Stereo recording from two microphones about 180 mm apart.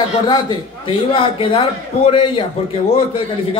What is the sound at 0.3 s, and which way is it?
Speech, 25° left (ahead or behind).